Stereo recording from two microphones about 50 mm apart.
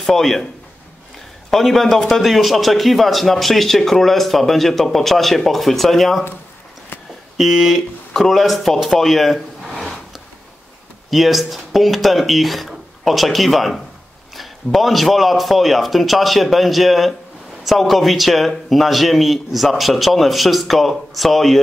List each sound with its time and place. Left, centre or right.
0.0 s a man's voice: centre
1.5 s a man's voice: centre
7.3 s speech: centre
11.1 s a man's voice: centre